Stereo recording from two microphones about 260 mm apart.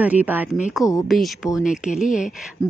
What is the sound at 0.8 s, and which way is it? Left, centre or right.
Speech, centre.